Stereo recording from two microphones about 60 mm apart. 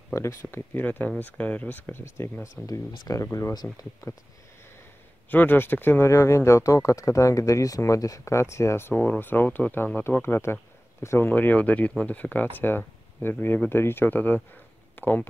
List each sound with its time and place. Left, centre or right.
0.1 s speech: left
0.7 s speech: left
2.5 s speech: left
5.3 s speech: left
6.0 s speech: left
8.4 s speech: left
11.2 s speech: left